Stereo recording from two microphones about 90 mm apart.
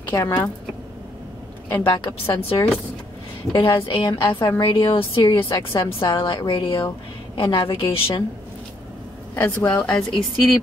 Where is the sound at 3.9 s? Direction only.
65° left (ahead or behind).